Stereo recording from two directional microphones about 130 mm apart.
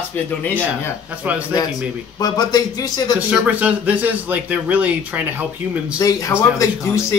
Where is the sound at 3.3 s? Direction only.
10° right (ahead or behind).